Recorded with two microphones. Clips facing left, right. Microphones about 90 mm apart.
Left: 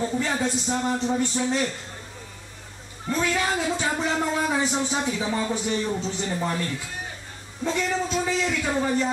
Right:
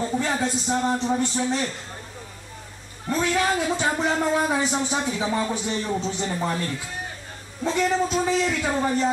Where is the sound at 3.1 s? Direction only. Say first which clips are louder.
Right 2 dB; 35° right (ahead or behind).